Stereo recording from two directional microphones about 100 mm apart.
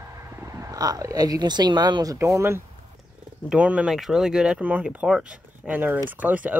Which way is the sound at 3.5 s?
10° right (ahead or behind).